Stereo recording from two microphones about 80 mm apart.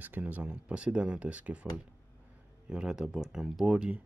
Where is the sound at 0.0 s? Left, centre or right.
Right.